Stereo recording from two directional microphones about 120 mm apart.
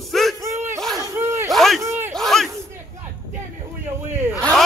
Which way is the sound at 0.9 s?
20° right (ahead or behind).